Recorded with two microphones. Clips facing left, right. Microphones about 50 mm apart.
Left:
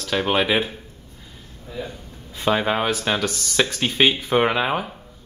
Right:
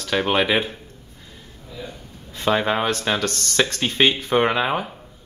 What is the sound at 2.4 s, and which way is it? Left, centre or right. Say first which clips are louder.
Speech: even; centre.